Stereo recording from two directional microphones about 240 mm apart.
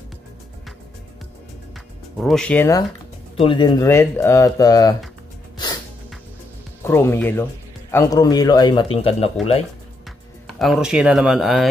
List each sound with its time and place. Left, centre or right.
2.1 s speech: centre
3.3 s speech: centre
6.8 s speech: centre
10.6 s speech: centre